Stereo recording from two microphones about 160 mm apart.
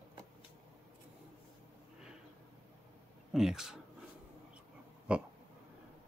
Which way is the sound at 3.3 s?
5° right (ahead or behind).